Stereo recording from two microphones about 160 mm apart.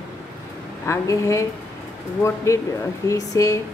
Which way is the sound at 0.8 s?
20° left (ahead or behind).